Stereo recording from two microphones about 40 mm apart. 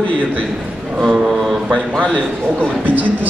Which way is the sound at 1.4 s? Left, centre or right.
Centre.